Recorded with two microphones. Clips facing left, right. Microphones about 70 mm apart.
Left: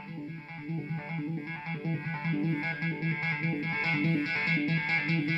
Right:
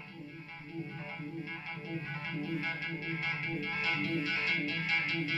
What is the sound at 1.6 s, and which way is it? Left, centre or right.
Music, left.